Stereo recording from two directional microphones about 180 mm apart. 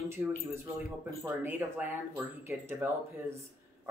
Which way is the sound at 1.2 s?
10° right (ahead or behind).